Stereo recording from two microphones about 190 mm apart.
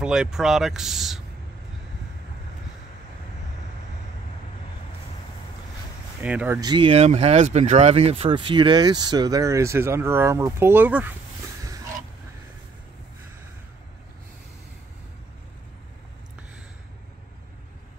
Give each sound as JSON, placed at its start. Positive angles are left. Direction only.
{"t": 0.0, "sound": "speech", "side_deg": -5}
{"t": 6.2, "sound": "speech", "side_deg": -10}
{"t": 6.6, "sound": "speech", "side_deg": -25}